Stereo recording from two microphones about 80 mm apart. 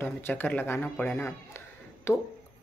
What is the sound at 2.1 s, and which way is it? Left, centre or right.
Speech, left.